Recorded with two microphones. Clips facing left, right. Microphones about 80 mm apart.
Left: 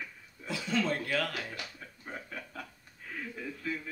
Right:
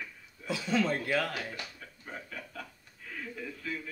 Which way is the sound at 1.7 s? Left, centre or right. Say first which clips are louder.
Left 1 dB; centre.